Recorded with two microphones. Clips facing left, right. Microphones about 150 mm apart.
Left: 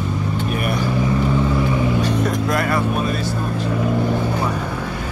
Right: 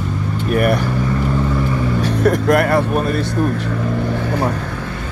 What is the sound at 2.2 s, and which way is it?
Speech, 65° right (ahead or behind).